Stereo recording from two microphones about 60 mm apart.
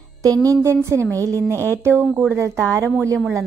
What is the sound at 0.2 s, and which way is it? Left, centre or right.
Speech, right.